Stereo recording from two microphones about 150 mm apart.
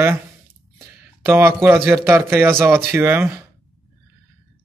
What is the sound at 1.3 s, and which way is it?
A man's voice, 15° right (ahead or behind).